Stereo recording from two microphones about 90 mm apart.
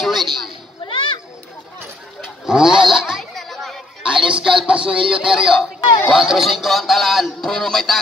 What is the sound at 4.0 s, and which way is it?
Music, 10° right (ahead or behind).